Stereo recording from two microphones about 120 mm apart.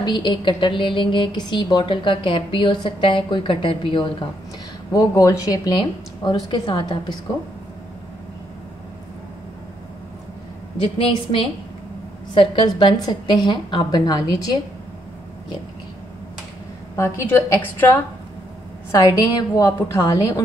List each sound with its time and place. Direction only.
0.0 s a woman's voice: 40° left (ahead or behind)
4.9 s a woman's voice: 25° left (ahead or behind)
10.8 s a woman's voice: 50° left (ahead or behind)
16.9 s a woman's voice: 20° left (ahead or behind)
18.9 s a woman's voice: 30° left (ahead or behind)